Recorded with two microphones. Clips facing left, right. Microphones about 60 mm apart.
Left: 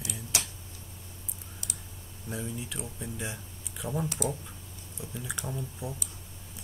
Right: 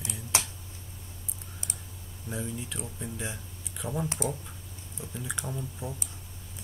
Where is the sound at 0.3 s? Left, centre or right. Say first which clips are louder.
Right 4 dB; right.